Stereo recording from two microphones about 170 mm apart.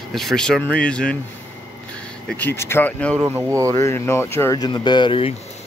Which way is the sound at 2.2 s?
10° left (ahead or behind).